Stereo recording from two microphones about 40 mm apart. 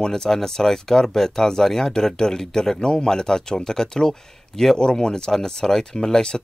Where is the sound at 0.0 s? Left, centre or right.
Centre.